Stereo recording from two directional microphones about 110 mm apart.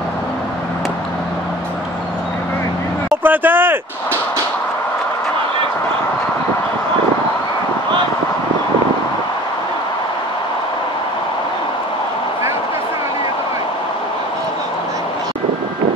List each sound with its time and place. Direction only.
3.3 s speech: 20° right (ahead or behind)